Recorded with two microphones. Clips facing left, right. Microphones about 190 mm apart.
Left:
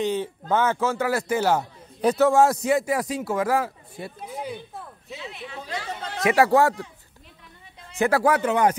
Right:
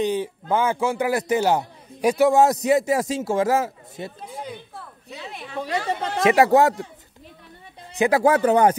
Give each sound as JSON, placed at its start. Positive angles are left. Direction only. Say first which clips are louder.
{"t": 0.0, "sound": "a man's voice", "louder": "right 2 dB", "side_deg": -15}
{"t": 4.3, "sound": "speech", "louder": "left 2 dB", "side_deg": 10}
{"t": 5.9, "sound": "speech", "louder": "right 7 dB", "side_deg": -75}
{"t": 6.2, "sound": "speech", "louder": "right 2 dB", "side_deg": -20}
{"t": 7.9, "sound": "speech", "louder": "right 3 dB", "side_deg": -15}